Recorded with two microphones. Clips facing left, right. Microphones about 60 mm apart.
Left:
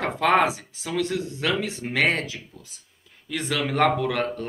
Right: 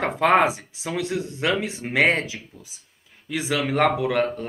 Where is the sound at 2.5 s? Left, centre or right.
Right.